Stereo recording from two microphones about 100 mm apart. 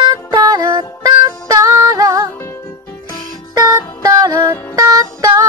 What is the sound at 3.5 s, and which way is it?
Music, 40° right (ahead or behind).